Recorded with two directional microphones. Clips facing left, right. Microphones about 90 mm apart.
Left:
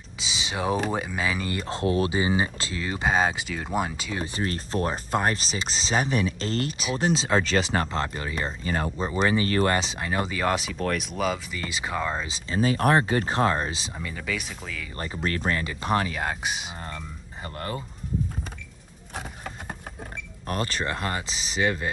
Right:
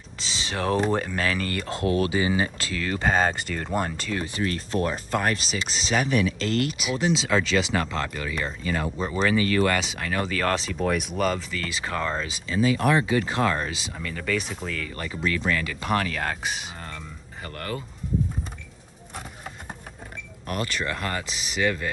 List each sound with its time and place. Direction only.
0.2 s speech: 10° left (ahead or behind)
4.2 s speech: 30° left (ahead or behind)
9.8 s speech: 25° left (ahead or behind)
10.8 s speech: 5° right (ahead or behind)
11.5 s speech: 20° left (ahead or behind)
12.3 s speech: 25° left (ahead or behind)
12.5 s speech: 45° left (ahead or behind); by 13.9 s 25° left (ahead or behind)
13.9 s speech: 10° left (ahead or behind)
15.1 s speech: 45° left (ahead or behind); by 17.8 s 25° left (ahead or behind)
20.4 s speech: 35° left (ahead or behind)